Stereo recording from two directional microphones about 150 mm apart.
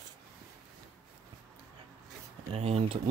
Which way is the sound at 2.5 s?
45° right (ahead or behind).